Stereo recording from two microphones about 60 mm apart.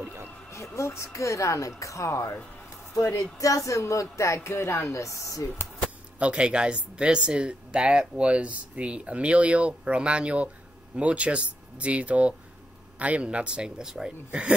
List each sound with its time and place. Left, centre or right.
0.0 s music: right
0.5 s speech: left
3.3 s speech: left
4.9 s speech: left
6.1 s speech: centre